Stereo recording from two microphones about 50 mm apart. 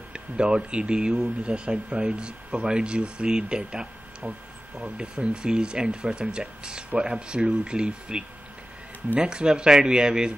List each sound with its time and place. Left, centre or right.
0.1 s speech: centre
9.2 s speech: centre